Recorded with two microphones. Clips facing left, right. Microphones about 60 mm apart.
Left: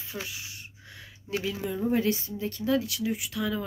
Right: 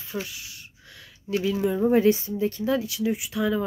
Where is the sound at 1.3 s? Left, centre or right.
Centre.